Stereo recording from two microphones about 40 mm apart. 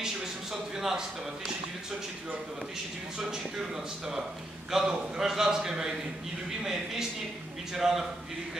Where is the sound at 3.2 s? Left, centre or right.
Centre.